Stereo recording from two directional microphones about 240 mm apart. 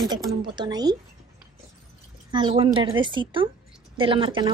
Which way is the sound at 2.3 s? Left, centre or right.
Right.